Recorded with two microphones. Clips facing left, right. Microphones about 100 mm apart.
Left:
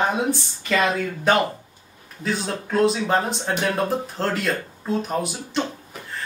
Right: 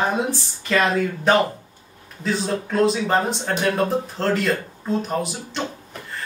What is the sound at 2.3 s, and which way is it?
Speech, centre (ahead or behind).